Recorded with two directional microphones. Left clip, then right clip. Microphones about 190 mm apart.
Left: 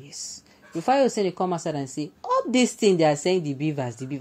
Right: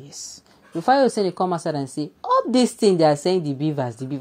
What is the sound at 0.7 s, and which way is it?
A woman's voice, 20° right (ahead or behind).